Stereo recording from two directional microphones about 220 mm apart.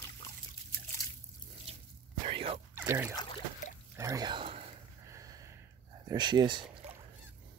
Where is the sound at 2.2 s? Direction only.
25° right (ahead or behind).